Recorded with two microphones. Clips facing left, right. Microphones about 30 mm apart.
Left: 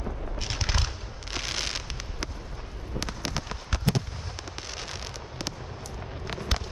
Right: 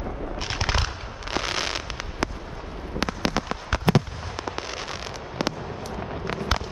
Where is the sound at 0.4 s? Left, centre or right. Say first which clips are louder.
Right 5 dB; centre.